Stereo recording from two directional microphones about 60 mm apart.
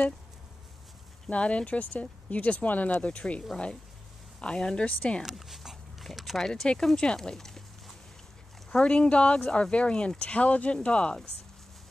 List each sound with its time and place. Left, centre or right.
1.3 s speech: centre
5.2 s dog: centre
6.0 s speech: centre